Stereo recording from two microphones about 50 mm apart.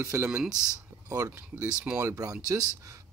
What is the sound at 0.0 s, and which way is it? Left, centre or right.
Speech, right.